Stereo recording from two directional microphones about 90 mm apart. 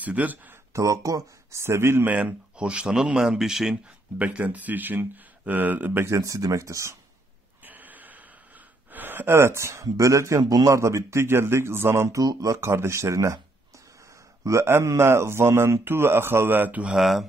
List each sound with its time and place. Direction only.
0.0 s speech: 15° right (ahead or behind)
0.7 s speech: 40° right (ahead or behind)
2.0 s speech: 15° right (ahead or behind)
4.2 s speech: 15° right (ahead or behind)
6.1 s speech: 35° right (ahead or behind)
7.6 s a sound: 20° right (ahead or behind)
8.9 s speech: 20° right (ahead or behind)
12.2 s speech: 45° right (ahead or behind)
12.5 s speech: 30° right (ahead or behind)
14.4 s speech: 30° right (ahead or behind)
16.8 s speech: 5° right (ahead or behind)